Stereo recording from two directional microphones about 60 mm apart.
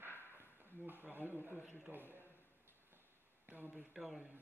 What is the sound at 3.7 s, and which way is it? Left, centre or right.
Speech, centre.